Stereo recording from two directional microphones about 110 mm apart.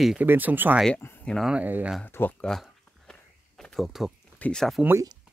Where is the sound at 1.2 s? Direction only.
Centre (ahead or behind).